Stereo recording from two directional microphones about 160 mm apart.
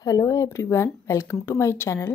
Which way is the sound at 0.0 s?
20° left (ahead or behind).